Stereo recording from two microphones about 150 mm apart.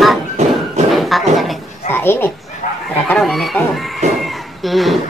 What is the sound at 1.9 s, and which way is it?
Speech, 15° left (ahead or behind).